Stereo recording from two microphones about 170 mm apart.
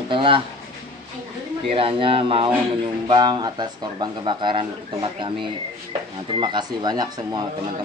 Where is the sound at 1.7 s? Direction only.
35° right (ahead or behind).